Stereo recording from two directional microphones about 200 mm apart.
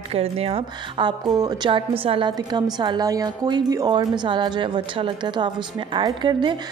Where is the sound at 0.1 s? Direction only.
30° right (ahead or behind).